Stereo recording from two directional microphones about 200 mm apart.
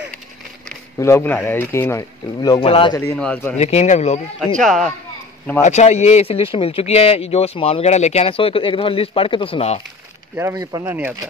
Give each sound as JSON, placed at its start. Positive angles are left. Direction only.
{"t": 0.9, "sound": "speech", "side_deg": 15}
{"t": 3.2, "sound": "speech", "side_deg": 5}
{"t": 3.5, "sound": "speech", "side_deg": 35}
{"t": 4.6, "sound": "speech", "side_deg": 0}
{"t": 5.6, "sound": "speech", "side_deg": 35}
{"t": 10.3, "sound": "speech", "side_deg": -15}